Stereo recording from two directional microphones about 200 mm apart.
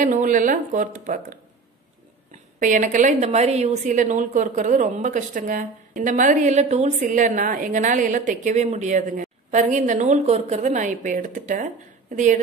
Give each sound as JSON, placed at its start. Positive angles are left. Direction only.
{"t": 0.0, "sound": "a woman's voice", "side_deg": -40}
{"t": 2.6, "sound": "a woman's voice", "side_deg": -40}